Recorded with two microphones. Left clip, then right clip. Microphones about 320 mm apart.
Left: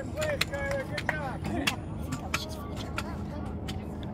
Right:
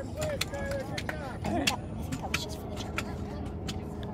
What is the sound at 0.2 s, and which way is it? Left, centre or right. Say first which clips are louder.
Vehicle: left 4 dB; left.